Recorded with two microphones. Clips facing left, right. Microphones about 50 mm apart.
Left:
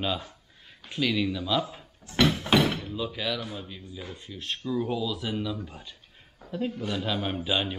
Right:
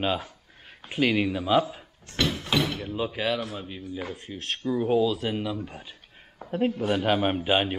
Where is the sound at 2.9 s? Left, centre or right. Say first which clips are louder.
Right 4 dB; right.